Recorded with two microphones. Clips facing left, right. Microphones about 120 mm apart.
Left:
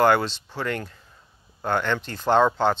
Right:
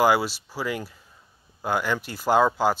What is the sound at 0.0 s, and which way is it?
Speech, 10° right (ahead or behind).